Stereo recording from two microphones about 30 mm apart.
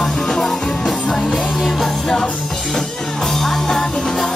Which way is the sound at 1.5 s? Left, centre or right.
Centre.